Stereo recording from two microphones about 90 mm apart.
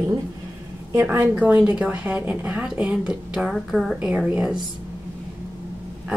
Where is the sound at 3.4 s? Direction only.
Centre (ahead or behind).